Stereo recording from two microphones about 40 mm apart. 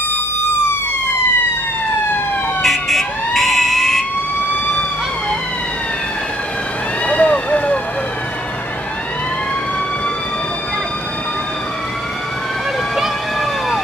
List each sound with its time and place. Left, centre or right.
2.6 s fire alarm: centre
7.1 s vehicle: left